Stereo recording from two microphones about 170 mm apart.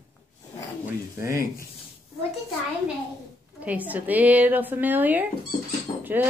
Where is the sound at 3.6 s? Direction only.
10° right (ahead or behind).